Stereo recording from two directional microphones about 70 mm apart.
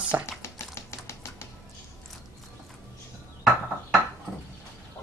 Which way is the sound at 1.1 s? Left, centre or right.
Left.